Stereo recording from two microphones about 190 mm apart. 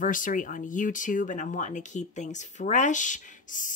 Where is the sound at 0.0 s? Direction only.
45° left (ahead or behind).